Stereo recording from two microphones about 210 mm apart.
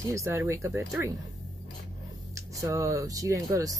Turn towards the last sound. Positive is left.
turn(degrees=-15)  # may be behind; listen again after turning